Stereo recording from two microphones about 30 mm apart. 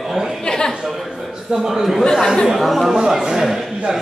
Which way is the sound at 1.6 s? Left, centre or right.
Centre.